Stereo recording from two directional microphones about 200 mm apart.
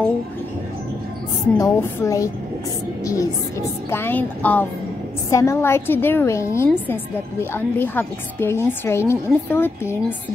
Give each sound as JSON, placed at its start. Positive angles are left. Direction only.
{"t": 1.4, "sound": "a woman's voice", "side_deg": 15}